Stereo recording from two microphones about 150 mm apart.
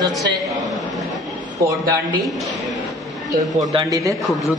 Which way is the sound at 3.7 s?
25° right (ahead or behind).